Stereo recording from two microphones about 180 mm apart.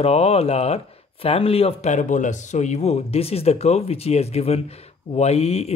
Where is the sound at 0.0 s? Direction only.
35° left (ahead or behind).